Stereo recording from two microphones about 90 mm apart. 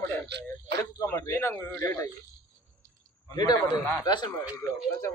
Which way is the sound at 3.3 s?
50° left (ahead or behind).